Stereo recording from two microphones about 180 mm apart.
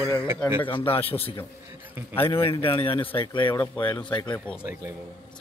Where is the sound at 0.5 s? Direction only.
30° left (ahead or behind).